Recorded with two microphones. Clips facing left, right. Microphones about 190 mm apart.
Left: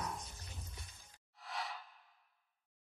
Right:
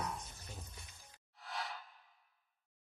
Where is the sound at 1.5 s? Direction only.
Centre (ahead or behind).